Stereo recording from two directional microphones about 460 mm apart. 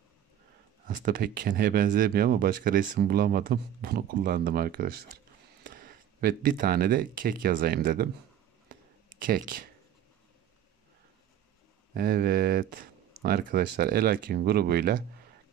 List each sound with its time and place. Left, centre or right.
0.8 s speech: centre
9.2 s speech: centre
11.9 s speech: centre